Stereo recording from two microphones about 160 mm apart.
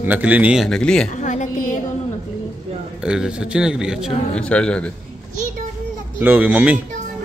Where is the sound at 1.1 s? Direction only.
50° left (ahead or behind).